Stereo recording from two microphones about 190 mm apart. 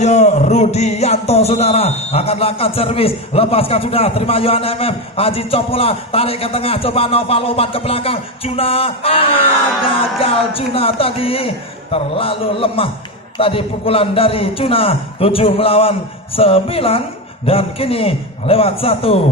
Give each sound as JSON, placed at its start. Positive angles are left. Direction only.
{"t": 0.0, "sound": "music", "side_deg": 35}
{"t": 9.8, "sound": "a man's voice", "side_deg": 30}
{"t": 17.5, "sound": "music", "side_deg": 30}